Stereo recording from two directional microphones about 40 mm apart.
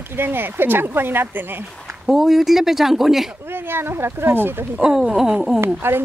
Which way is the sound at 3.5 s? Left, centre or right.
Right.